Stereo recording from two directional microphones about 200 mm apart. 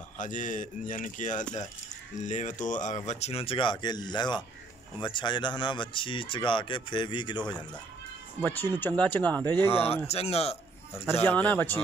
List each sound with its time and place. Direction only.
0.2 s speech: 40° left (ahead or behind); by 7.5 s 20° left (ahead or behind)
8.4 s speech: 10° left (ahead or behind)
9.7 s a man's voice: 30° left (ahead or behind)
11.2 s speech: 10° left (ahead or behind)